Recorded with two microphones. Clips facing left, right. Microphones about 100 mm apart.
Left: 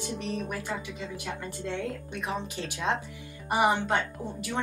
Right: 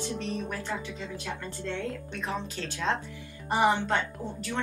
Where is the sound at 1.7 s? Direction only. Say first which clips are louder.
Even; 15° left (ahead or behind).